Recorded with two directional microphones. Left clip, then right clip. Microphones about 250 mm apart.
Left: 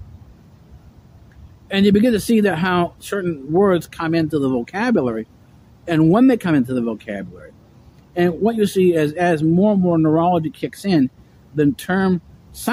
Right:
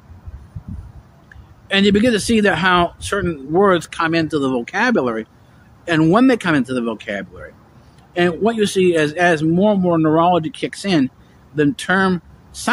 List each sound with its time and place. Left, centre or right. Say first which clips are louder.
1.7 s speech: right 2 dB; centre